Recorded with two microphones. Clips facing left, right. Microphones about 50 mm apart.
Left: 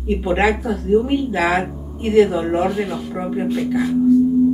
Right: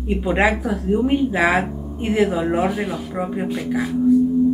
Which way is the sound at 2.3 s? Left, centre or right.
Centre.